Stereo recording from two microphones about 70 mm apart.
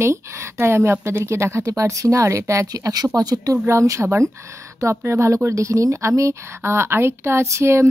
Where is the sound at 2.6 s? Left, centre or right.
Right.